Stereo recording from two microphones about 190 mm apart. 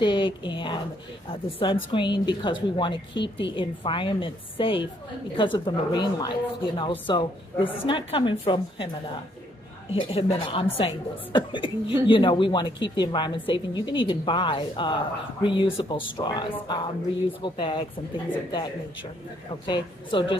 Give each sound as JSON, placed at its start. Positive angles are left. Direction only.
{"t": 0.0, "sound": "a woman's voice", "side_deg": 25}
{"t": 9.9, "sound": "a woman's voice", "side_deg": 30}
{"t": 19.6, "sound": "a woman's voice", "side_deg": 25}